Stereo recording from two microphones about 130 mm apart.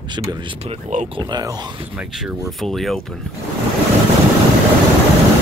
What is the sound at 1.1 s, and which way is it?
Speech, 30° right (ahead or behind).